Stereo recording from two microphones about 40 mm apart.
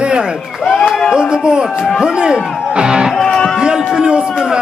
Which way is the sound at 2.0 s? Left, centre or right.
Centre.